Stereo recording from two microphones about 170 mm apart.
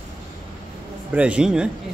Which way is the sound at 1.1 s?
5° right (ahead or behind).